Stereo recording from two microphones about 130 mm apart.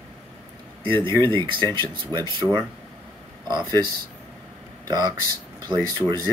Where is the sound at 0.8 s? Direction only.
20° left (ahead or behind).